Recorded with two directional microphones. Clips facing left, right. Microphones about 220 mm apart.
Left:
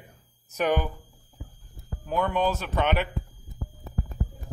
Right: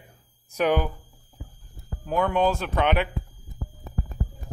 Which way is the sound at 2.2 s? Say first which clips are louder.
Right 3 dB; 10° right (ahead or behind).